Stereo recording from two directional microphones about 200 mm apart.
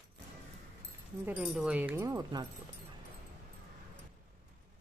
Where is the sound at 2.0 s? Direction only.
20° right (ahead or behind).